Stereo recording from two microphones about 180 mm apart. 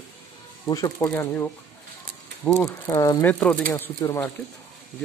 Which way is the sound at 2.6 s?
20° left (ahead or behind).